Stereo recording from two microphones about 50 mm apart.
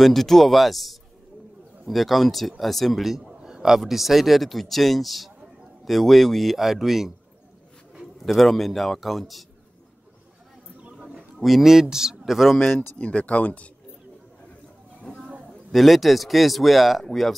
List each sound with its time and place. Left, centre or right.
0.0 s speech: centre
8.2 s speech: centre
11.3 s speech: centre
13.0 s speech: left
15.7 s speech: centre